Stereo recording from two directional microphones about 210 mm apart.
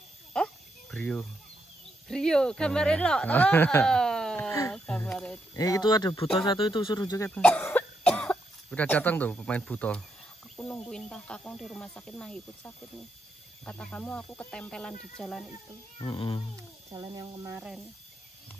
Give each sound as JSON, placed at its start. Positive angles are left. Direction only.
{"t": 0.3, "sound": "a sound", "side_deg": 5}
{"t": 2.0, "sound": "speech", "side_deg": 5}
{"t": 5.5, "sound": "speech", "side_deg": 15}
{"t": 7.2, "sound": "speech", "side_deg": 5}
{"t": 16.0, "sound": "speech", "side_deg": 25}
{"t": 16.9, "sound": "speech", "side_deg": -15}